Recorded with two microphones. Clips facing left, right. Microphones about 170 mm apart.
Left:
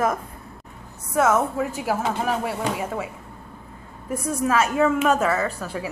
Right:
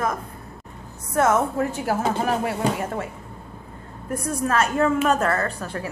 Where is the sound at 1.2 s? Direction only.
Centre (ahead or behind).